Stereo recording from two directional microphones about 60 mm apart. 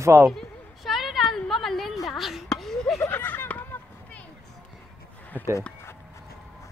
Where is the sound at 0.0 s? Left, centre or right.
Right.